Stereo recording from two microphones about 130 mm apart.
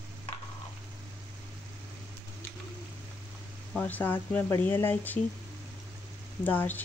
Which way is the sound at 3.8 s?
15° left (ahead or behind).